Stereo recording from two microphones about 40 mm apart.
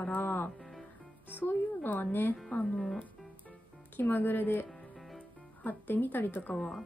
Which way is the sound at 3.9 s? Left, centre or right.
Left.